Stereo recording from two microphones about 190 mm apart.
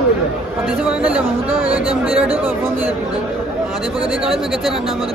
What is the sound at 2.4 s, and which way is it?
Speech, 10° right (ahead or behind).